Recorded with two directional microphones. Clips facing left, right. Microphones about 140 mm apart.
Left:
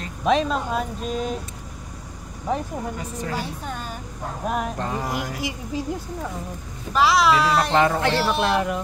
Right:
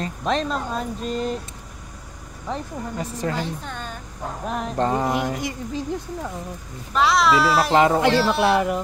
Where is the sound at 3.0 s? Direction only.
35° right (ahead or behind).